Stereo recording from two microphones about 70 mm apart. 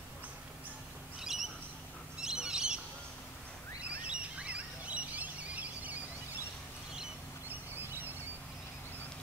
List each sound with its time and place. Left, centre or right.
1.2 s bird: centre
4.1 s bird: centre
7.4 s a sound: right